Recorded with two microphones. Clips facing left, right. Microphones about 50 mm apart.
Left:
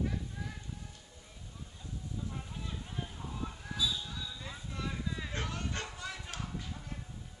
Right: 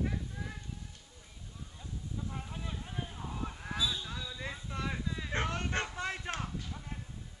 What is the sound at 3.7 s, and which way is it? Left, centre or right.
Basketball bounce, right.